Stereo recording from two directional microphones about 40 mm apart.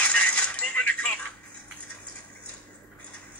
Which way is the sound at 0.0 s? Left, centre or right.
Left.